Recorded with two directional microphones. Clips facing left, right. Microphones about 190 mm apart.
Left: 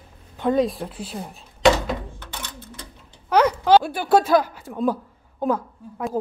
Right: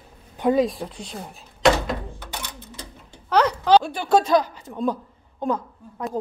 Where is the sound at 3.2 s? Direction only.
10° left (ahead or behind).